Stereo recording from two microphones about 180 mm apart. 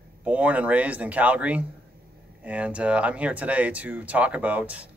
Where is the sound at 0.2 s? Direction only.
5° right (ahead or behind).